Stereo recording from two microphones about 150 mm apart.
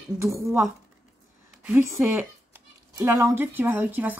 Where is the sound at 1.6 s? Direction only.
15° right (ahead or behind).